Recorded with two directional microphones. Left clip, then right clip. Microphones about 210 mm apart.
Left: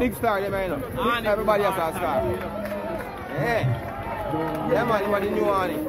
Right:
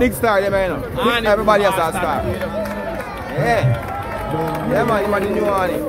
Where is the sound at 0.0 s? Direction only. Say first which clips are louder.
Right 8 dB; 5° right (ahead or behind).